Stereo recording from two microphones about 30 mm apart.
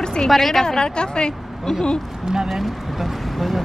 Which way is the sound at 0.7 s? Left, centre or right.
Left.